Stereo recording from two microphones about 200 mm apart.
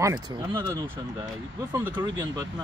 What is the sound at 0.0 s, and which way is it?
Speech, 15° right (ahead or behind).